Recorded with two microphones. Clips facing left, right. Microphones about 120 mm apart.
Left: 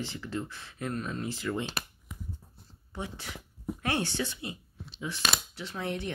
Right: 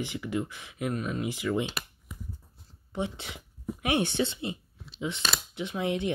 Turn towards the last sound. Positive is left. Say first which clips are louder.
# right 5 dB
turn(degrees=-15)  # may be behind; listen again after turning